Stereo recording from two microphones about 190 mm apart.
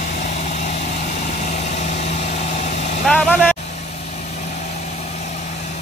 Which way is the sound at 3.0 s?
5° left (ahead or behind).